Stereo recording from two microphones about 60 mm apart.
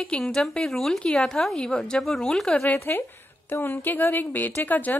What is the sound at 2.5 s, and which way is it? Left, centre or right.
A woman's voice, left.